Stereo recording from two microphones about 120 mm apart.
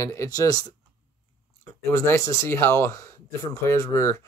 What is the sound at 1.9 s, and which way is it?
Speech, 25° left (ahead or behind).